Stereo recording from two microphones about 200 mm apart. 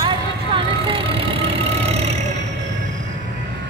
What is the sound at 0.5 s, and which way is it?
Vehicle, 25° right (ahead or behind).